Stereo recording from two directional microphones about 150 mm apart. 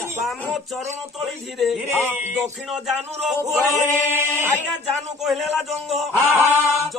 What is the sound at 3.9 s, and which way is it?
Speech, 15° right (ahead or behind).